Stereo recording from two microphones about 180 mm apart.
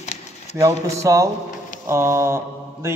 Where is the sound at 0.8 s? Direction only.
20° right (ahead or behind).